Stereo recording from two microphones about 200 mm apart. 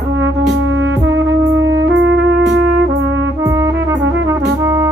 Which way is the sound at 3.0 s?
65° right (ahead or behind).